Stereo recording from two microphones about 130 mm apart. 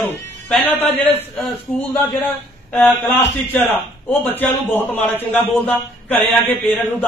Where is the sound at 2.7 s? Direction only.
15° left (ahead or behind).